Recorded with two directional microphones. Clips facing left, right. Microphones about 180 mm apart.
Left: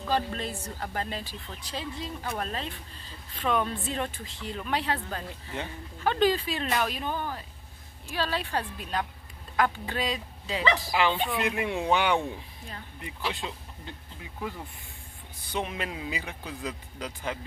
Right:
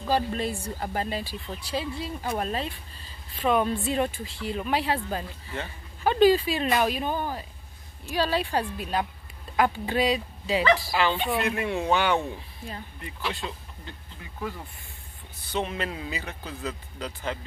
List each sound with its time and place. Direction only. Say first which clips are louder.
0.0 s speech: right 3 dB; 10° right (ahead or behind)
10.9 s speech: right 1 dB; 15° left (ahead or behind)
13.4 s speech: right 1 dB; 15° left (ahead or behind)
15.5 s speech: right 3 dB; 10° left (ahead or behind)